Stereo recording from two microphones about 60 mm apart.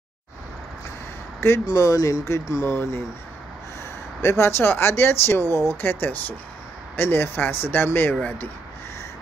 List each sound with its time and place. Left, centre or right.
1.7 s speech: left
2.6 s speech: left
4.2 s speech: left
8.2 s speech: left